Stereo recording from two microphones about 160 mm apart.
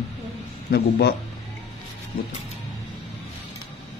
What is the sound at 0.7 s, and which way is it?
Speech, 90° left.